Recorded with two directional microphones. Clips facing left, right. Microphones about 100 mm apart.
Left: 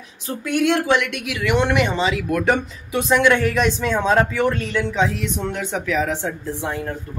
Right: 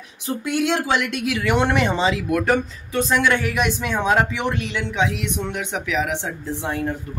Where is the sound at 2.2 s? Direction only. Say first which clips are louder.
Even; 5° right (ahead or behind).